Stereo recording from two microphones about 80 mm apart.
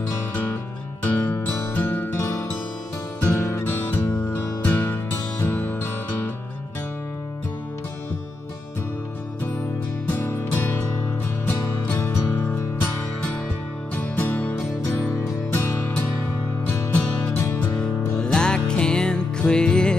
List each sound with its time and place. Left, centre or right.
0.3 s music: left
10.1 s music: left
13.9 s music: left
17.4 s music: left
17.6 s music: centre